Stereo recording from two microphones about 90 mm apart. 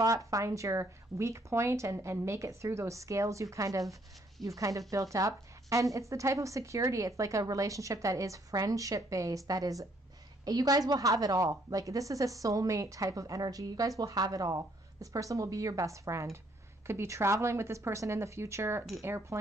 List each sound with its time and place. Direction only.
0.0 s a woman's voice: 40° right (ahead or behind)